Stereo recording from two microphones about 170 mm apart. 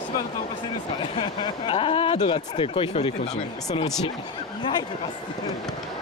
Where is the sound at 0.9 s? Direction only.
30° left (ahead or behind).